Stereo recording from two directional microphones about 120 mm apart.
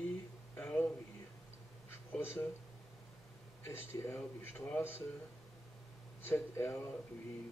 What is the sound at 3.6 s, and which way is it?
Speech, 20° left (ahead or behind).